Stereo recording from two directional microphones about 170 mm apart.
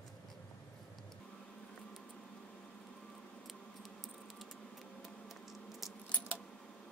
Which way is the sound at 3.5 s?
Centre (ahead or behind).